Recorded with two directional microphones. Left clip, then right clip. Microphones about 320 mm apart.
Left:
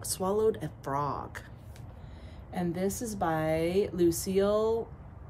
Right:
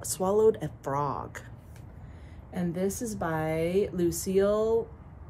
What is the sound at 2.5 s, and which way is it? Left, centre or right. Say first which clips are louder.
Speech: right 1 dB; centre.